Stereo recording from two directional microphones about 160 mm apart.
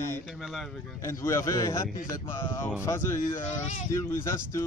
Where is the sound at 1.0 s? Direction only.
20° left (ahead or behind).